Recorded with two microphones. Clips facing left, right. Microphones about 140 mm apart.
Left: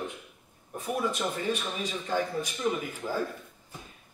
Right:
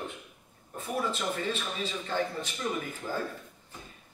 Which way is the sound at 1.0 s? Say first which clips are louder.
Even; 15° left (ahead or behind).